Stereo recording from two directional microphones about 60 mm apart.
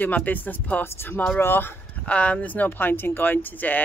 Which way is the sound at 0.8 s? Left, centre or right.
Left.